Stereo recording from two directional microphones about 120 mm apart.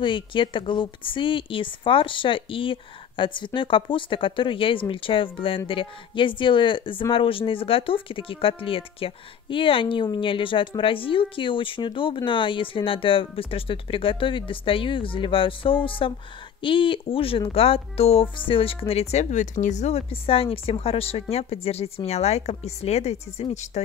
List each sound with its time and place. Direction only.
0.0 s speech: 45° left (ahead or behind); by 20.0 s 75° left (ahead or behind)
20.1 s speech: 50° left (ahead or behind); by 23.8 s 65° left (ahead or behind)